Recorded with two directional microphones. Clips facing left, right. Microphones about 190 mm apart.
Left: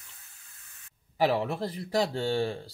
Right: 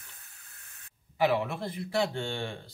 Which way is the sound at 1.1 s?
35° left (ahead or behind).